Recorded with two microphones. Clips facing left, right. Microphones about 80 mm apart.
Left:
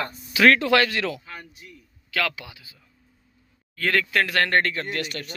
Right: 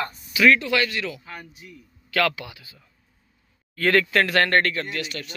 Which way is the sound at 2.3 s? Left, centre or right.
Centre.